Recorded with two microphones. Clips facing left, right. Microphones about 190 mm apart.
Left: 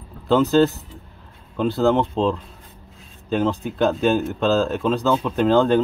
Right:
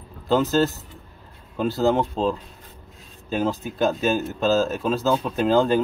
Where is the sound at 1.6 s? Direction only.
5° right (ahead or behind).